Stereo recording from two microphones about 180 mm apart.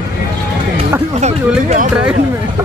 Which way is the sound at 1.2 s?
40° right (ahead or behind).